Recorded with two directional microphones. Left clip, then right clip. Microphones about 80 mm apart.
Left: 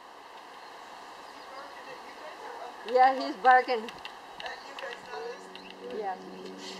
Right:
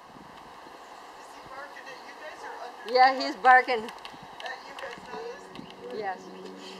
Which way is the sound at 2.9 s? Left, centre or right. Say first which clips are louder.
Right 2 dB; centre.